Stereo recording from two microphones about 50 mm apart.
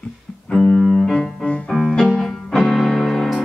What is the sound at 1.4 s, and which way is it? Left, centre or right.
Music, left.